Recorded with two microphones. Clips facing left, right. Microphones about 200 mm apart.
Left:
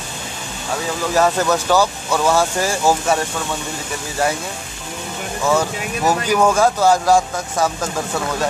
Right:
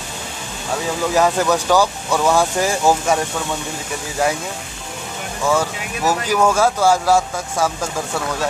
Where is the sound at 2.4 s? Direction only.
15° right (ahead or behind).